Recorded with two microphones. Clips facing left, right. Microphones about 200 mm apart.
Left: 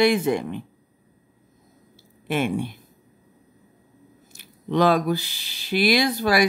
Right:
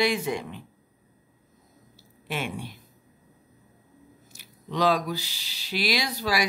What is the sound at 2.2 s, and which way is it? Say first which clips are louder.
Speech: left 9 dB; 55° left (ahead or behind).